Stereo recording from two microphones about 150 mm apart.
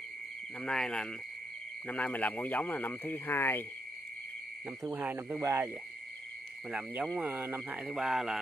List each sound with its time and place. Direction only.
0.6 s speech: 5° left (ahead or behind)
4.6 s speech: 20° right (ahead or behind)
6.7 s speech: 10° right (ahead or behind)